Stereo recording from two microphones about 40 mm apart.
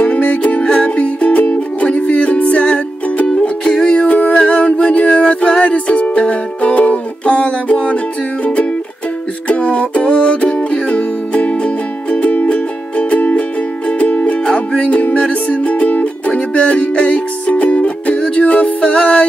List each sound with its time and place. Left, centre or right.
0.0 s music: left
3.3 s music: left
9.5 s music: left
14.9 s music: left